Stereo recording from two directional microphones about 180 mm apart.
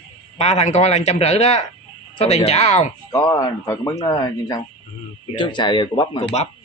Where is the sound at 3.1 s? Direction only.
20° left (ahead or behind).